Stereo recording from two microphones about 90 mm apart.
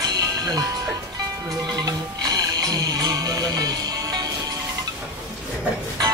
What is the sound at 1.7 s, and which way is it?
Music, 45° right (ahead or behind).